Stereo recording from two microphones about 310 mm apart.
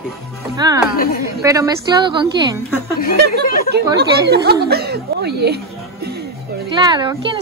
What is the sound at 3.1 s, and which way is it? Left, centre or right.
Speech, right.